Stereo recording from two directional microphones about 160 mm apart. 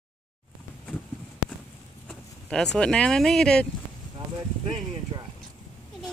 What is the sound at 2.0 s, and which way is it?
Speech, 5° left (ahead or behind).